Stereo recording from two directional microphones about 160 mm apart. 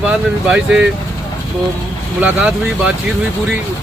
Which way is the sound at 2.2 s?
10° right (ahead or behind).